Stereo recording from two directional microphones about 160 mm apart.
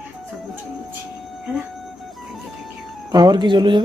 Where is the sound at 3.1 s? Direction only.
25° right (ahead or behind).